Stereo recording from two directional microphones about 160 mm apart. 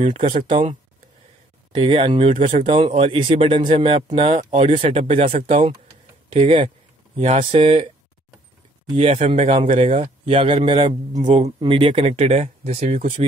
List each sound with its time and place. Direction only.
0.1 s speech: 55° right (ahead or behind)
1.7 s a man's voice: 35° right (ahead or behind)
2.2 s speech: 50° right (ahead or behind)
2.6 s a man's voice: 35° right (ahead or behind)
8.9 s a man's voice: 40° right (ahead or behind)